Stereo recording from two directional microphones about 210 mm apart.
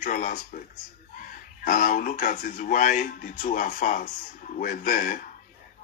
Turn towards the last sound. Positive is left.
turn(degrees=40)  # may be behind; listen again after turning